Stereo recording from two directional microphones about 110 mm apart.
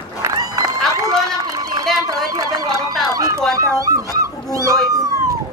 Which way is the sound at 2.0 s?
35° right (ahead or behind).